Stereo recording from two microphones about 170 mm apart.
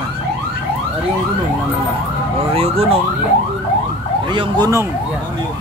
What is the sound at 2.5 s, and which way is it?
Speech, 35° right (ahead or behind).